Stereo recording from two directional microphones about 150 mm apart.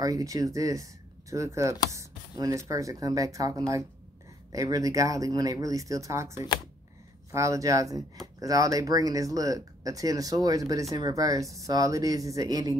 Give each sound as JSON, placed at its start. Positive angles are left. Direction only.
{"t": 0.0, "sound": "speech", "side_deg": -25}